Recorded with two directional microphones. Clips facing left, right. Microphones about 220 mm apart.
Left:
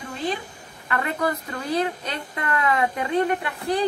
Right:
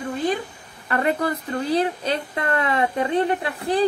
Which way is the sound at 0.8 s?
35° right (ahead or behind).